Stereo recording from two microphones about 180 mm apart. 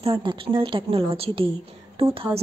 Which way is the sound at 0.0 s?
30° right (ahead or behind).